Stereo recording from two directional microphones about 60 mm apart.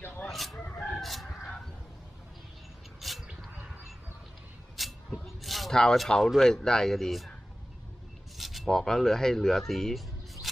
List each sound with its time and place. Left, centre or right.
0.0 s chicken: left
0.3 s chicken: centre
0.9 s fowl: centre
3.0 s mouse: centre
4.8 s a sound: centre
5.8 s speech: centre
8.4 s speech: centre
10.4 s a sound: centre